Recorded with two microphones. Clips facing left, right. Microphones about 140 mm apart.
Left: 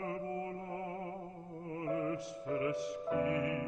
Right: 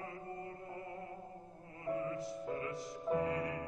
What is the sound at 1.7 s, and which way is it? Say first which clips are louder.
Music: left 3 dB; 90° left.